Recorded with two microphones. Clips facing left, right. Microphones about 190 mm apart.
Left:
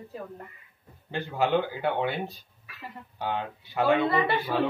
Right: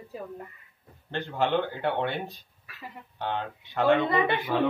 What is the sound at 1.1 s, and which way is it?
A man's voice, 5° left (ahead or behind).